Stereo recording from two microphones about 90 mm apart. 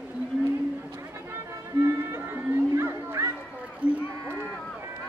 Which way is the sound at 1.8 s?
30° right (ahead or behind).